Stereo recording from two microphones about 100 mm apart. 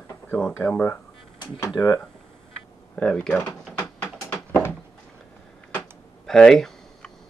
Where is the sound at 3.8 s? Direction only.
20° left (ahead or behind).